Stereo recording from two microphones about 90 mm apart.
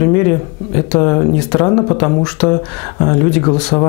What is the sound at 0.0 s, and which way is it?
Speech, 15° left (ahead or behind).